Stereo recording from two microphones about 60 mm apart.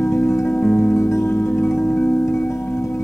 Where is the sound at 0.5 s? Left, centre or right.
Left.